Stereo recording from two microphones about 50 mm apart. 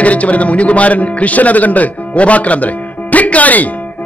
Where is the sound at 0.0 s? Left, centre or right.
Left.